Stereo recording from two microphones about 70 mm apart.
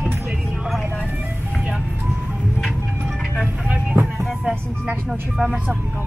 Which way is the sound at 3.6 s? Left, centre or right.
Centre.